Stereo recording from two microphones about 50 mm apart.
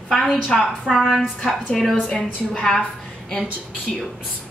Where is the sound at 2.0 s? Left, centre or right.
Centre.